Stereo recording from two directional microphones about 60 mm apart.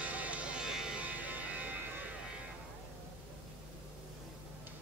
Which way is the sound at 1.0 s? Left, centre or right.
Right.